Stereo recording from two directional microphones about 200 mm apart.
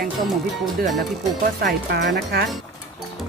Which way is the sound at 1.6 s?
55° right (ahead or behind).